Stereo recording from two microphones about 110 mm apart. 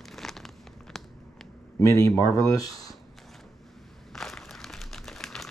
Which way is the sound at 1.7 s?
25° left (ahead or behind).